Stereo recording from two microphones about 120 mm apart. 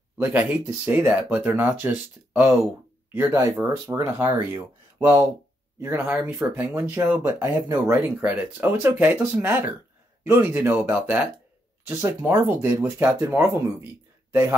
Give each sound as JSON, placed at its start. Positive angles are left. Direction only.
{"t": 0.2, "sound": "speech", "side_deg": -15}
{"t": 11.9, "sound": "speech", "side_deg": -20}